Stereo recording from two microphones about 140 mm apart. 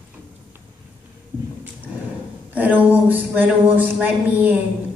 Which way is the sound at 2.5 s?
10° right (ahead or behind).